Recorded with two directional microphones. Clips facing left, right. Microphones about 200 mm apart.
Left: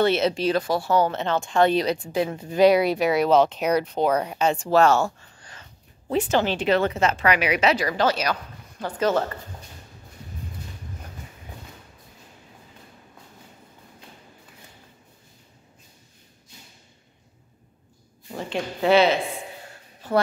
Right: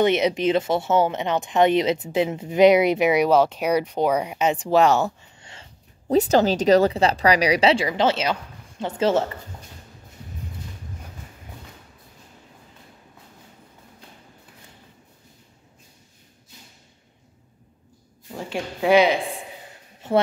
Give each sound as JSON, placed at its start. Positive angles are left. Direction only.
{"t": 0.0, "sound": "speech", "side_deg": -15}
{"t": 6.0, "sound": "speech", "side_deg": -40}
{"t": 18.3, "sound": "a woman's voice", "side_deg": -5}
{"t": 20.0, "sound": "a sound", "side_deg": -25}